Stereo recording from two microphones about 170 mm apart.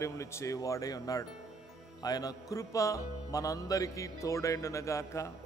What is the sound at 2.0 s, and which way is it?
Music, 20° left (ahead or behind).